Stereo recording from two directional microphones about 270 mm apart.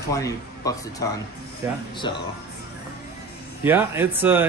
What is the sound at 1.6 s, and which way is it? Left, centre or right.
Speech, centre.